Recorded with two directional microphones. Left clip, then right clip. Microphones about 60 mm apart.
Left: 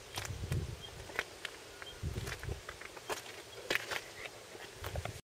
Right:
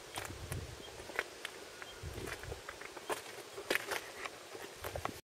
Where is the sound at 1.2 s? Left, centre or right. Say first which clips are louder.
Left 1 dB; centre.